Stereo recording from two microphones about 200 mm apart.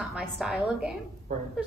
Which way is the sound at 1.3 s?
35° right (ahead or behind).